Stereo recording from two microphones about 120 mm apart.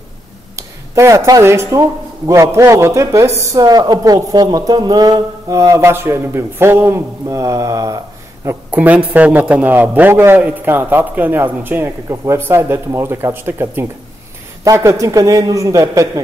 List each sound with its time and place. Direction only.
0.6 s speech: 25° right (ahead or behind)
8.6 s a man's voice: 10° right (ahead or behind); by 16.1 s 25° right (ahead or behind)